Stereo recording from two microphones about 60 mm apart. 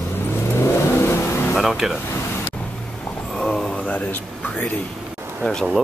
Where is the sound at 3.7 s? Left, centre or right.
Left.